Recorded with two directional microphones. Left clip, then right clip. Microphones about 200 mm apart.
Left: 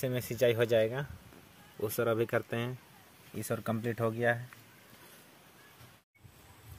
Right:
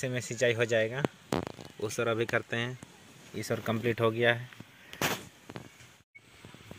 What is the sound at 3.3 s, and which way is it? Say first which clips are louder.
Speech: right 3 dB; 10° right (ahead or behind).